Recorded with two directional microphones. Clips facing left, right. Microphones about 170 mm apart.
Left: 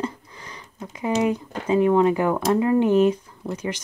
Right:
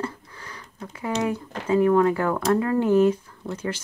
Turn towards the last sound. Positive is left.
turn(degrees=10)  # may be behind; listen again after turning